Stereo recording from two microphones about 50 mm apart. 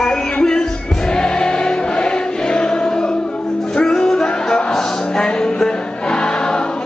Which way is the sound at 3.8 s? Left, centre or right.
Centre.